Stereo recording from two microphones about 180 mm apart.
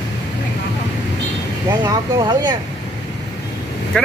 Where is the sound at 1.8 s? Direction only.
25° right (ahead or behind).